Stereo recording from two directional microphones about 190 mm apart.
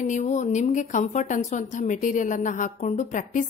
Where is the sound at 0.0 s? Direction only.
40° left (ahead or behind).